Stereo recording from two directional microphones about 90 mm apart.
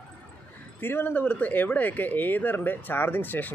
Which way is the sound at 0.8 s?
25° left (ahead or behind).